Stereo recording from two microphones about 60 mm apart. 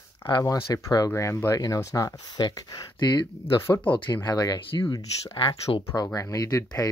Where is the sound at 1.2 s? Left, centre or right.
Left.